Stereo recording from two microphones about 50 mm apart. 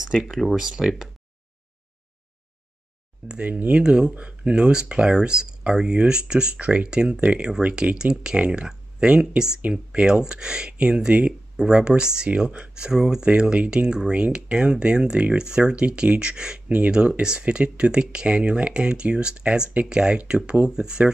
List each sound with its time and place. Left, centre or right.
0.3 s speech: centre
0.6 s speech: centre
3.3 s speech: right
3.8 s speech: centre
9.6 s speech: right